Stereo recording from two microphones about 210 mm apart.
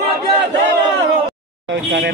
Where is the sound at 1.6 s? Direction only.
60° right (ahead or behind).